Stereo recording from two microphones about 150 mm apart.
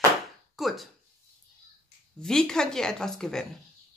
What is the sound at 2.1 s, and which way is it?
Speech, 5° left (ahead or behind).